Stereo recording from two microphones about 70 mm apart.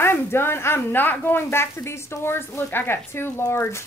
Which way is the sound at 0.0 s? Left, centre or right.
Left.